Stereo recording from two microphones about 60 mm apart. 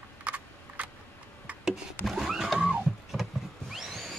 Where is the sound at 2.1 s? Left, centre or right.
Centre.